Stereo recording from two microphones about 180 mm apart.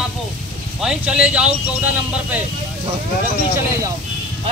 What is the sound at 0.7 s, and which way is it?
Speech, 5° right (ahead or behind).